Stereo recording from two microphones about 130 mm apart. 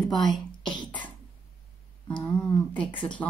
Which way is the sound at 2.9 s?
40° left (ahead or behind).